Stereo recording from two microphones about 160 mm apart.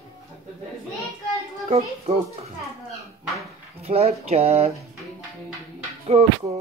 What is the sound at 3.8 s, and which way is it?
Speech, 40° right (ahead or behind).